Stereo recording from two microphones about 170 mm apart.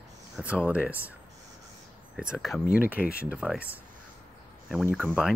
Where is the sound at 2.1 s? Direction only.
5° right (ahead or behind).